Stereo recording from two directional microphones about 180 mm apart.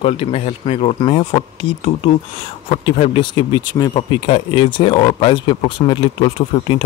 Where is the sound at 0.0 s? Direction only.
30° left (ahead or behind).